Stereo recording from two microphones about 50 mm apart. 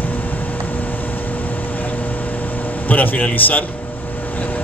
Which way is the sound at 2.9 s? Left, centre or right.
Left.